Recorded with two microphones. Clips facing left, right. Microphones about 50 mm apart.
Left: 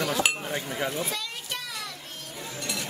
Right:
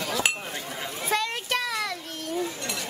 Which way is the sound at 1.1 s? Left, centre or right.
Right.